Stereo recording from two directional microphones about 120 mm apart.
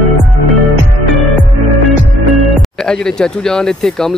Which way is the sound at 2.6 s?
5° left (ahead or behind).